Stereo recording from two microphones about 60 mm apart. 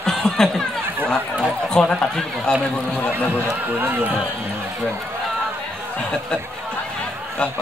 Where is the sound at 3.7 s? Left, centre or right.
Right.